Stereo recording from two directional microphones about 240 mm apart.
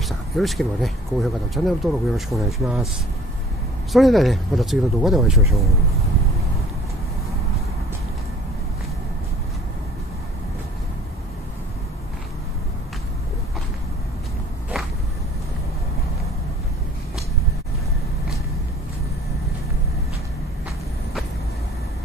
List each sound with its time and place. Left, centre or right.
0.0 s speech: centre
3.9 s speech: centre